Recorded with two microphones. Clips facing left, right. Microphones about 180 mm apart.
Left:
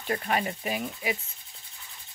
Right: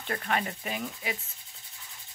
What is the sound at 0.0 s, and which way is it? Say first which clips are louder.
Speech: left 3 dB; 15° left (ahead or behind).